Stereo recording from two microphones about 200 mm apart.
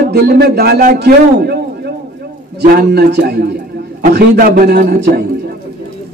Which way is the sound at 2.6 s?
55° right (ahead or behind).